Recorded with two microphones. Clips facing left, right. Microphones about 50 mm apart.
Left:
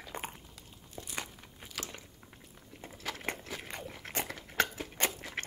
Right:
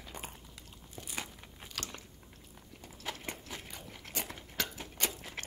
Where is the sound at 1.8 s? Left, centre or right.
Centre.